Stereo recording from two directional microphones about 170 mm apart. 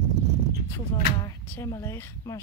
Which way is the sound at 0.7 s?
15° left (ahead or behind).